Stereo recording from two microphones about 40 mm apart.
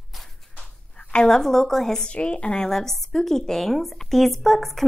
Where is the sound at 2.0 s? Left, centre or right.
Left.